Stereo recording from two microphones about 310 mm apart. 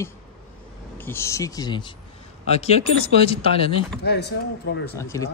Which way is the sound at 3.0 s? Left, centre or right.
Centre.